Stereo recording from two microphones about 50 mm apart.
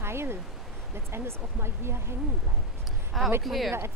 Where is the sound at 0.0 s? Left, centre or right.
Right.